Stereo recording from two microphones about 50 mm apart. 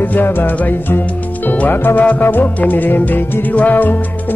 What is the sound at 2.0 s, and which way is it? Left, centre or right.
Music, left.